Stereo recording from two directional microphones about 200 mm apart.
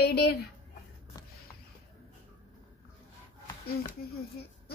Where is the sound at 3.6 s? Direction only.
50° left (ahead or behind).